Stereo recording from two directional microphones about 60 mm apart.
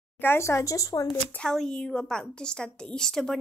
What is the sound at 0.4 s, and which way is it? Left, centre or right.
Speech, left.